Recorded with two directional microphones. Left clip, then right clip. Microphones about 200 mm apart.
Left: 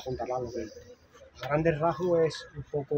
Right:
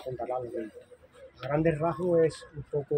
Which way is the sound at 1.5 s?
30° right (ahead or behind).